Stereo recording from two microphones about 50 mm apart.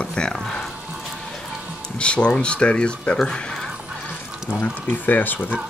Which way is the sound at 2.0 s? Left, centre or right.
Left.